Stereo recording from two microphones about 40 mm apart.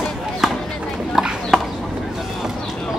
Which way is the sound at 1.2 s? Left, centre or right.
Centre.